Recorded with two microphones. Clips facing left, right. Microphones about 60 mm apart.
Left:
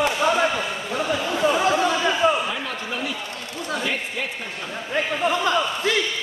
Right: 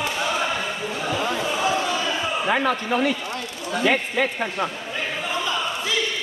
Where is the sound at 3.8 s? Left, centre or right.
Right.